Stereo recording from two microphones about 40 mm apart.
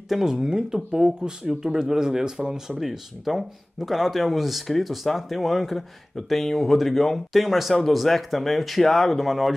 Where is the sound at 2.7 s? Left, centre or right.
Centre.